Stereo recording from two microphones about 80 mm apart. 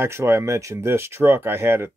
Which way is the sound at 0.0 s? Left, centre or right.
Right.